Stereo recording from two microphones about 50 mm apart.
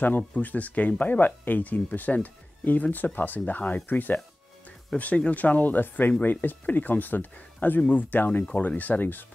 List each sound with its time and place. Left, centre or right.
0.3 s speech: left